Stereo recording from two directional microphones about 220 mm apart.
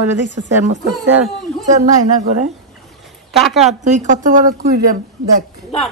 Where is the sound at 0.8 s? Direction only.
Centre (ahead or behind).